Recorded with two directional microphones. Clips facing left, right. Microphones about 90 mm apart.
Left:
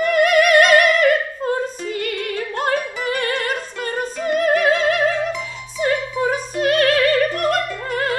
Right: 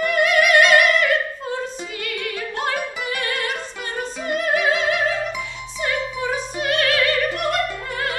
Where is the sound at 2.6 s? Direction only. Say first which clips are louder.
Left 3 dB; 40° left (ahead or behind).